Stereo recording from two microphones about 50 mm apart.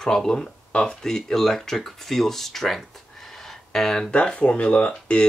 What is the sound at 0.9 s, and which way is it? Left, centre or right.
Speech, centre.